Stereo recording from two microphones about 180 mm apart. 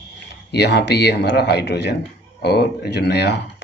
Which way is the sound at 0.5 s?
70° left (ahead or behind).